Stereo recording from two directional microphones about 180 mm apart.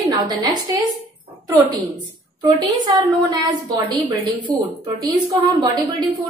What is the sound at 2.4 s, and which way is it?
A woman's voice, 20° right (ahead or behind).